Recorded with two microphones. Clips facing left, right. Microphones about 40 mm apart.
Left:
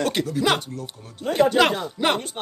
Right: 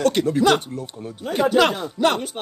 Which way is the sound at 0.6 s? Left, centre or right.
Right.